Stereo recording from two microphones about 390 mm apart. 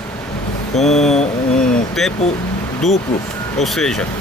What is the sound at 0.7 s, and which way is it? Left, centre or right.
Speech, centre.